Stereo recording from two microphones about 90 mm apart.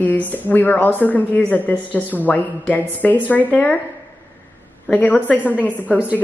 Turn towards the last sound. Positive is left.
turn(degrees=20)  # may be behind; listen again after turning